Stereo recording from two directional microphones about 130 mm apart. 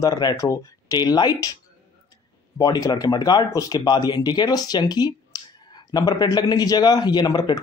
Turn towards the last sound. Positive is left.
turn(degrees=30)  # may be behind; listen again after turning